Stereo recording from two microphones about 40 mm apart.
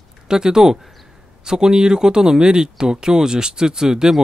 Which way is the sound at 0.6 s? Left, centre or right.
Centre.